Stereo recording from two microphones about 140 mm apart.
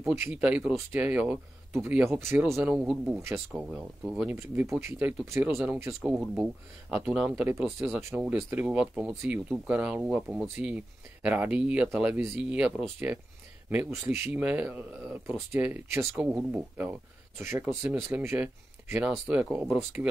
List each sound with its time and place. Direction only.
0.0 s speech: 20° right (ahead or behind)
2.6 s speech: 5° right (ahead or behind)
4.4 s speech: 20° right (ahead or behind)